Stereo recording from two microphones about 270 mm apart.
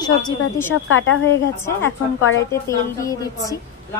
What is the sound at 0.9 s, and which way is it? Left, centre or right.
Speech, left.